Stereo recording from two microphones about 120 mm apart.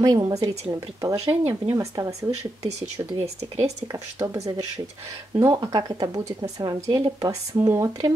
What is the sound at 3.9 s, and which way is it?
Speech, 25° right (ahead or behind).